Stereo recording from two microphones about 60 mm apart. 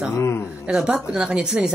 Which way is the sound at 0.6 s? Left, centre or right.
Centre.